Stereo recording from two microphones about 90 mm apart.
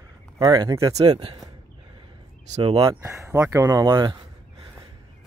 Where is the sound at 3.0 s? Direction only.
35° right (ahead or behind).